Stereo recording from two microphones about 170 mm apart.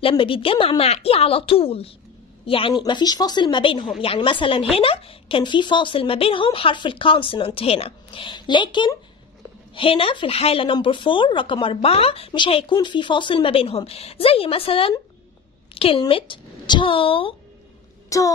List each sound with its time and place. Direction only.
0.1 s a woman's voice: 30° left (ahead or behind)
18.1 s speech: 20° left (ahead or behind)